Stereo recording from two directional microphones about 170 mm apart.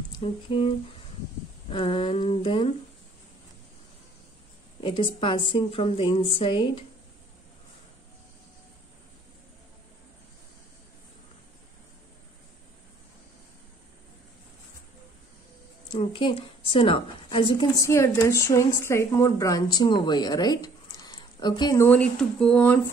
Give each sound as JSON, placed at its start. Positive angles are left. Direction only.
{"t": 0.2, "sound": "a woman's voice", "side_deg": 30}
{"t": 4.8, "sound": "a woman's voice", "side_deg": 30}
{"t": 16.0, "sound": "a woman's voice", "side_deg": 30}
{"t": 17.7, "sound": "speech", "side_deg": 15}
{"t": 21.8, "sound": "speech", "side_deg": 5}